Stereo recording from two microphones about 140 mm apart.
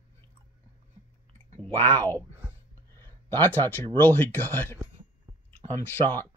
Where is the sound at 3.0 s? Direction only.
15° left (ahead or behind).